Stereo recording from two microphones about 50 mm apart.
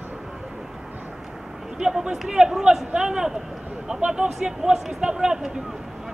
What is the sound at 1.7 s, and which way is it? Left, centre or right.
Speech, centre.